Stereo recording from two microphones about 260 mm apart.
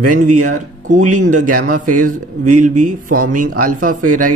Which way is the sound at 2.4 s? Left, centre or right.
Right.